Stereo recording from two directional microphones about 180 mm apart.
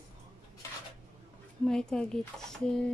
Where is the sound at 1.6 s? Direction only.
5° left (ahead or behind).